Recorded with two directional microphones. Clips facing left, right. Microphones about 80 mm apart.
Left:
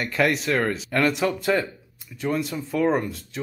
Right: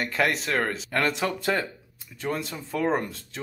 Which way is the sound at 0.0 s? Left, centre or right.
Right.